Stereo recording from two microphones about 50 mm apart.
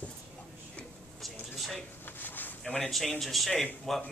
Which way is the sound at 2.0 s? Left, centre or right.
Left.